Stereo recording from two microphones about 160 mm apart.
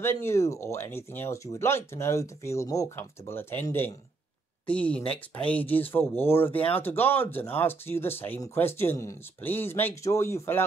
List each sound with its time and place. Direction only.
0.0 s speech: 15° left (ahead or behind)